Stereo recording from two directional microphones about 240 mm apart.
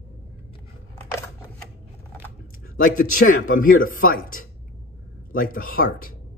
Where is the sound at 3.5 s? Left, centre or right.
Left.